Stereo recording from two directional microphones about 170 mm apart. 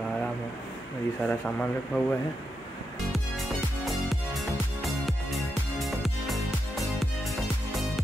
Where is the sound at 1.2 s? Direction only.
5° left (ahead or behind).